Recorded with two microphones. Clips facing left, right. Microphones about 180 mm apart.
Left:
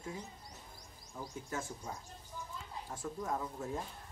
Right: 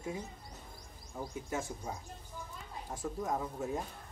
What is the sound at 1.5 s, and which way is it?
Speech, 15° right (ahead or behind).